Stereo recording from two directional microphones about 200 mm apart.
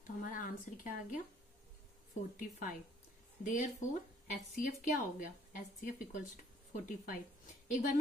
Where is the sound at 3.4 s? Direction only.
40° left (ahead or behind).